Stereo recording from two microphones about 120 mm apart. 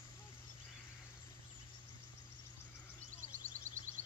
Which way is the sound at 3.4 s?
90° right.